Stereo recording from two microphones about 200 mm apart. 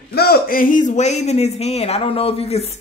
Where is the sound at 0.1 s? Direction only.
50° left (ahead or behind).